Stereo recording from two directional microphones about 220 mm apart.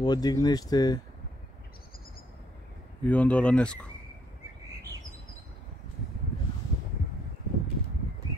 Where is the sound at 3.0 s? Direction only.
5° left (ahead or behind).